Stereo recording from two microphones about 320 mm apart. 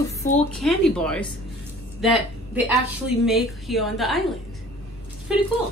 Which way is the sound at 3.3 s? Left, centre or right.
Centre.